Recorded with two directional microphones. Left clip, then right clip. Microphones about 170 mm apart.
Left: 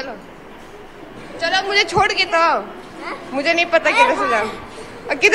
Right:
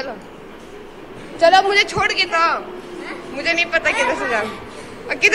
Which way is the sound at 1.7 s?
15° left (ahead or behind).